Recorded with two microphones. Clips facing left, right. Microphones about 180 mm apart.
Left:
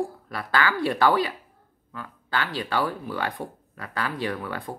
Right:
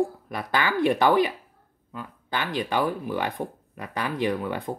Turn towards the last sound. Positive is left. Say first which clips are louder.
# right 4 dB
turn(degrees=-20)  # may be behind; listen again after turning